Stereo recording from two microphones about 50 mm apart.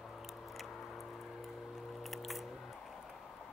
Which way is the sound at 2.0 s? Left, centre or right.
Centre.